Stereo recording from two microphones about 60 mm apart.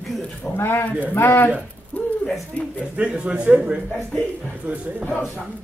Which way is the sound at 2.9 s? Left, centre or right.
Right.